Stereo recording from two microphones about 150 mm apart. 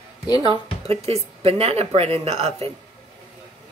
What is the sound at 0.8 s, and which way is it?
Speech, 40° right (ahead or behind).